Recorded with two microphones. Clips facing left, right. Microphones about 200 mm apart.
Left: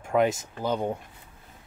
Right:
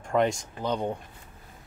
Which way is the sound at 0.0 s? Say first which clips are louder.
Left 1 dB; 5° left (ahead or behind).